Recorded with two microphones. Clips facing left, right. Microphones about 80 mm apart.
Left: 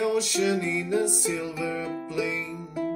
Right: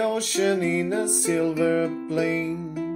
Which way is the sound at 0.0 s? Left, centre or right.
Right.